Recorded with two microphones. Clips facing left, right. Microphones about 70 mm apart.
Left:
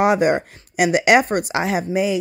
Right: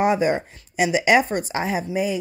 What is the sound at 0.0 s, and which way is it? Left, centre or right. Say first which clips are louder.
Speech: left 3 dB; left.